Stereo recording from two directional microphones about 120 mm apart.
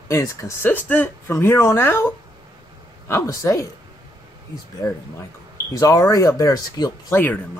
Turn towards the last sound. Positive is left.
turn(degrees=30)  # may be behind; listen again after turning